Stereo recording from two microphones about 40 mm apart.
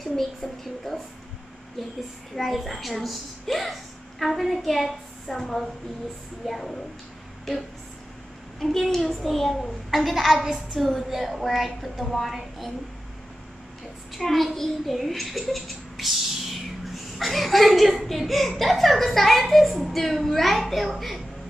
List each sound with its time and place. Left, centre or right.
0.0 s a woman's voice: centre
10.3 s a woman's voice: centre
10.7 s a woman's voice: centre
14.1 s a child's voice: centre